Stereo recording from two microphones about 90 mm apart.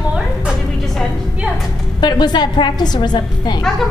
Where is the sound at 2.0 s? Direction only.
55° left (ahead or behind).